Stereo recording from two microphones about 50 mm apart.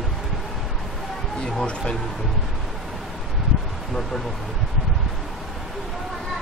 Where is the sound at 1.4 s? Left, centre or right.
Centre.